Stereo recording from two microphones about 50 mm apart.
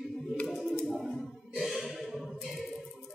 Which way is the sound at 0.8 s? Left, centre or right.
Centre.